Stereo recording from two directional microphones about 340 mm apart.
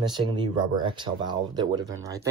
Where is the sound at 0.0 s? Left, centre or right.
Centre.